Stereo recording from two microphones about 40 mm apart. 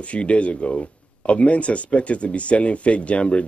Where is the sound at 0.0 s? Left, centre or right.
Left.